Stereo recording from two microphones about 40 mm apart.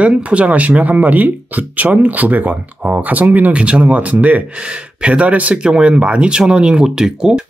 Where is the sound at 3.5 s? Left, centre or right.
Right.